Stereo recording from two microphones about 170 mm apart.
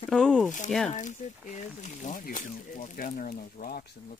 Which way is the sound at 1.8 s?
50° left (ahead or behind).